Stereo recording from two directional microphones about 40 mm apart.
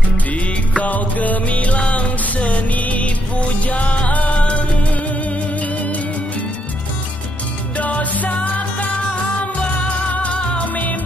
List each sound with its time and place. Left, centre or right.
0.3 s music: left
7.7 s music: left